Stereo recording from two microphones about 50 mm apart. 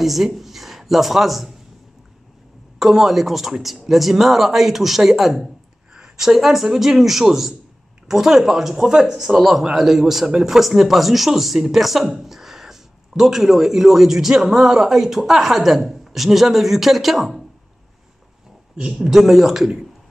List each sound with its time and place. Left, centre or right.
0.0 s speech: centre
2.8 s a man's voice: centre
18.8 s a man's voice: centre